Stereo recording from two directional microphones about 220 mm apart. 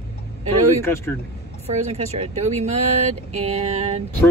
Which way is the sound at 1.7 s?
30° right (ahead or behind).